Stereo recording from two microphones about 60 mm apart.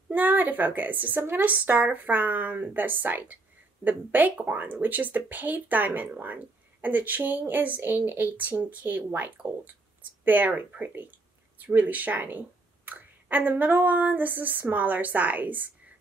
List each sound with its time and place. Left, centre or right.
0.1 s a woman's voice: right